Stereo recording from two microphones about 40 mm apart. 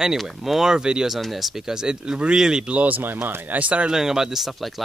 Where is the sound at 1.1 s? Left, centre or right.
Centre.